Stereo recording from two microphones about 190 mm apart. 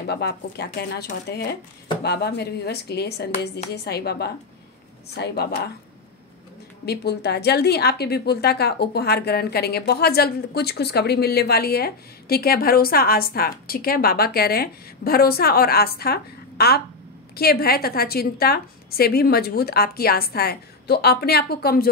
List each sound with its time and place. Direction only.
0.0 s a woman's voice: 55° left (ahead or behind)
6.9 s a woman's voice: 60° left (ahead or behind)